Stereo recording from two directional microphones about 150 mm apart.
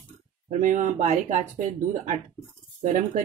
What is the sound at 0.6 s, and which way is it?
Speech, 55° right (ahead or behind).